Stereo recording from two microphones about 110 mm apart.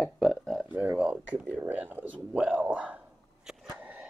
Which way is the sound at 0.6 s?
15° right (ahead or behind).